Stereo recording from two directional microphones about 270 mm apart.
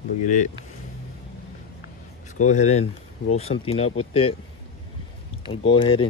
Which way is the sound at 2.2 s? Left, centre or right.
Left.